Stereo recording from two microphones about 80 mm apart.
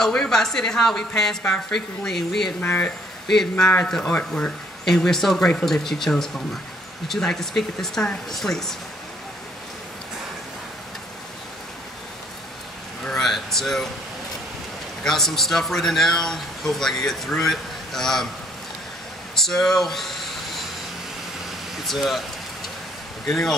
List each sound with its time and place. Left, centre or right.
0.0 s speech: centre
2.6 s speech: centre
13.0 s a sound: centre
15.0 s speech: centre
19.3 s a sound: centre
21.8 s speech: centre
23.2 s speech: centre